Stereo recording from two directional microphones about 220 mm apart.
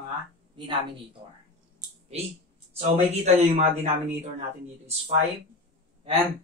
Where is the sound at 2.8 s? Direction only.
30° right (ahead or behind).